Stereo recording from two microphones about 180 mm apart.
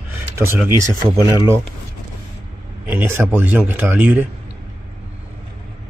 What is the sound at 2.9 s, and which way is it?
Speech, 10° right (ahead or behind).